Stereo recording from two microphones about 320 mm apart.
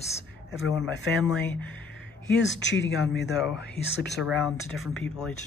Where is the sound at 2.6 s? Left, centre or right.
Left.